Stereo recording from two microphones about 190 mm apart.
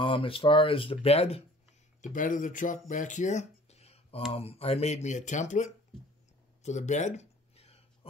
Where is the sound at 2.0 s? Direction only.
45° left (ahead or behind).